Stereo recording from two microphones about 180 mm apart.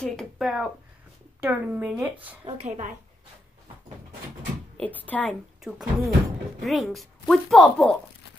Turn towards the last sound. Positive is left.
turn(degrees=0)  # may be behind; listen again after turning